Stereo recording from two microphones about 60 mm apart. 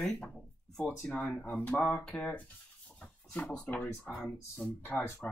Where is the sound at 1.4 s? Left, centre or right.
Left.